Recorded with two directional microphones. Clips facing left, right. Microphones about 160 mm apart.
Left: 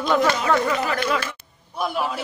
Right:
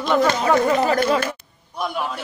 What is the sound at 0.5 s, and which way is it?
Speech, 30° right (ahead or behind).